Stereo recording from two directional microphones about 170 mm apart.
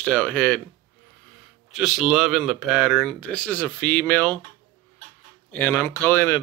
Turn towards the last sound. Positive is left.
turn(degrees=15)  # may be behind; listen again after turning